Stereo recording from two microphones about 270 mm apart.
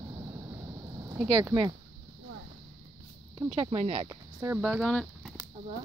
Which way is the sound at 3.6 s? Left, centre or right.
Centre.